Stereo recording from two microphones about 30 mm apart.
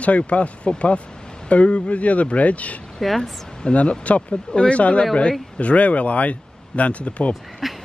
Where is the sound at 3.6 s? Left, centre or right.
Left.